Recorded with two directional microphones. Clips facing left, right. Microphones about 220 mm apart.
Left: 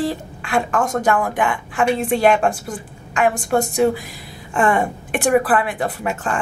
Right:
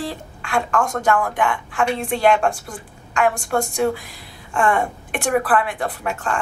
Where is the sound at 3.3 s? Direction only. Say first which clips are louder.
Left 3 dB; 20° left (ahead or behind).